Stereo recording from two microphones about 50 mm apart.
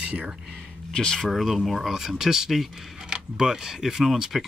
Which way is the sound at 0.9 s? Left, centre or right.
Centre.